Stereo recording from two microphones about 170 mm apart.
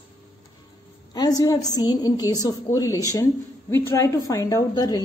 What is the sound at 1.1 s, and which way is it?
A woman's voice, 20° left (ahead or behind).